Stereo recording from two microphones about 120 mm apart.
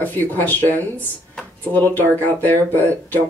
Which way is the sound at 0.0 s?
15° left (ahead or behind).